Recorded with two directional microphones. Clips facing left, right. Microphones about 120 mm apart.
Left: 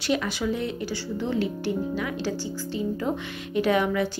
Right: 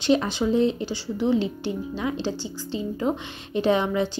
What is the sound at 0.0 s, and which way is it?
Speech, 25° right (ahead or behind).